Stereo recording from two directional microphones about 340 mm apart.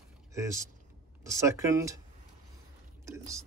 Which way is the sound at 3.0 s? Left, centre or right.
Centre.